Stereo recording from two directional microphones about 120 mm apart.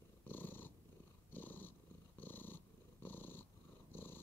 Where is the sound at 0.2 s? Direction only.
15° left (ahead or behind).